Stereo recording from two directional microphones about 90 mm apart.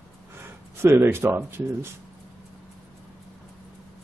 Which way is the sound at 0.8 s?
25° right (ahead or behind).